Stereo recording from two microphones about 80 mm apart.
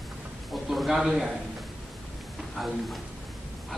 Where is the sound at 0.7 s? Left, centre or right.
Centre.